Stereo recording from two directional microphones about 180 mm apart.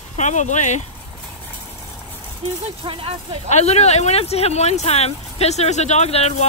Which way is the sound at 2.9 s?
30° right (ahead or behind).